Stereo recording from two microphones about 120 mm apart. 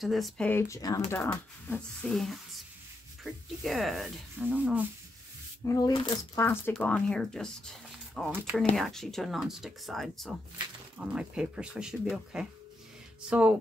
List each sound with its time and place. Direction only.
0.0 s speech: centre (ahead or behind)
0.5 s speech: 20° left (ahead or behind)
1.8 s speech: 5° left (ahead or behind); by 4.8 s 10° right (ahead or behind)
5.7 s speech: 35° left (ahead or behind)
6.3 s speech: 20° left (ahead or behind); by 13.6 s 10° right (ahead or behind)